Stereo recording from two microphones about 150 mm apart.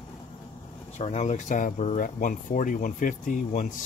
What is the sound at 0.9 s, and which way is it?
Speech, 50° left (ahead or behind).